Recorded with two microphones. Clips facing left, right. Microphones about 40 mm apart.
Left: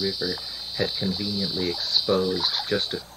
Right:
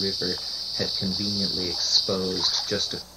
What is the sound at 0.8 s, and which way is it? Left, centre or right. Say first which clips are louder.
Speech: left 3 dB; left.